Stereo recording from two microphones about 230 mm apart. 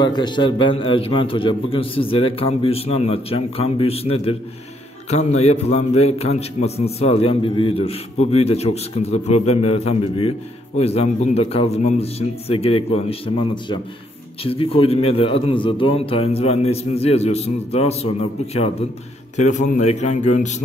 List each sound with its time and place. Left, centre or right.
0.0 s a man's voice: centre
14.4 s a man's voice: left